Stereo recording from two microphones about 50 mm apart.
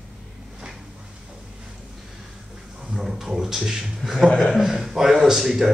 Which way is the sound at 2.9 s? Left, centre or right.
Centre.